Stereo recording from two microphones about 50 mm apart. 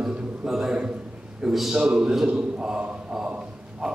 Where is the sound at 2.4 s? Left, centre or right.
Centre.